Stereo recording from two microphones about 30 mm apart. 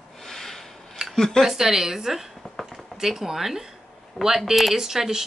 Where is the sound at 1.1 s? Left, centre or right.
Centre.